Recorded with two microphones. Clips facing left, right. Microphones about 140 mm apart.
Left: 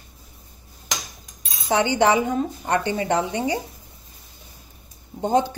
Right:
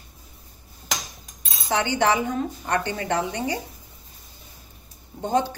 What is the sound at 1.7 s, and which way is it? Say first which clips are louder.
A woman's voice: left 3 dB; 20° left (ahead or behind).